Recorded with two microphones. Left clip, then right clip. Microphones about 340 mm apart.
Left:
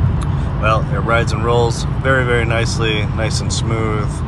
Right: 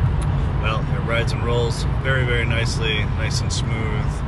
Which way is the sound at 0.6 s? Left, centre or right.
Centre.